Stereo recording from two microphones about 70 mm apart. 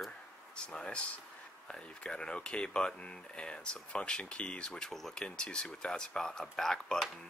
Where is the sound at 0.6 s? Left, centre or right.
Centre.